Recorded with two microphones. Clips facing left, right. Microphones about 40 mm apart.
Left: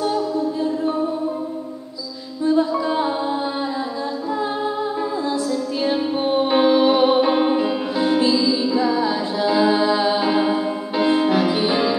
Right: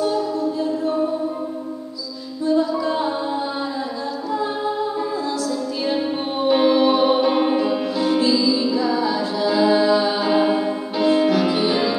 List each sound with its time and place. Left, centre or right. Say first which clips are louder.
2.4 s music: left 1 dB; centre
5.9 s music: left 3 dB; centre
10.3 s music: right 1 dB; centre
11.0 s music: even; centre